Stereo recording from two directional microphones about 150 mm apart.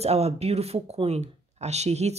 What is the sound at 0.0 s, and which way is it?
Speech, 45° right (ahead or behind).